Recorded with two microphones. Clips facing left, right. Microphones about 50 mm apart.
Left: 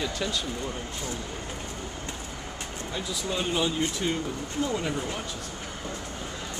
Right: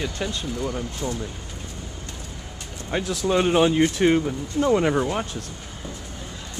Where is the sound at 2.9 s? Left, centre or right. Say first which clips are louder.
Right 10 dB; right.